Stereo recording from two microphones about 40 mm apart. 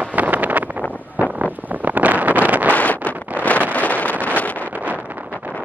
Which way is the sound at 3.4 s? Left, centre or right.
Right.